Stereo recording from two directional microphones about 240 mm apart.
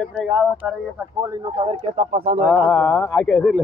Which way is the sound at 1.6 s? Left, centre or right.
Right.